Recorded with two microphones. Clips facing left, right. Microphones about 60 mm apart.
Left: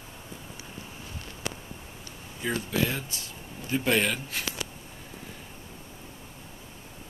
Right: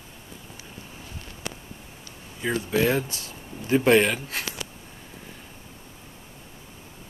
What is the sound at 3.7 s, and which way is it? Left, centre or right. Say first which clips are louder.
Speech: right 7 dB; right.